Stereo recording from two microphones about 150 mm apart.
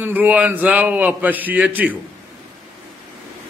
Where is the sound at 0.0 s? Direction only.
10° right (ahead or behind).